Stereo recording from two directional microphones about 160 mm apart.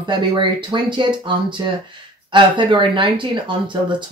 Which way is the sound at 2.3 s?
30° right (ahead or behind).